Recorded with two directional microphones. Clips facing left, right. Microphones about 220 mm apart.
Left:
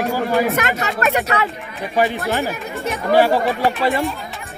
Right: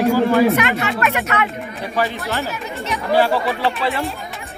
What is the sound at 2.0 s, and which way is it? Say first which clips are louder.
Speech: left 4 dB; 15° left (ahead or behind).